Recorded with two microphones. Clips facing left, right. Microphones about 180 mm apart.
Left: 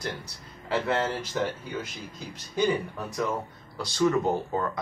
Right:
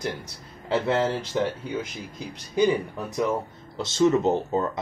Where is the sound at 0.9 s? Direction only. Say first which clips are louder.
Right 4 dB; 25° right (ahead or behind).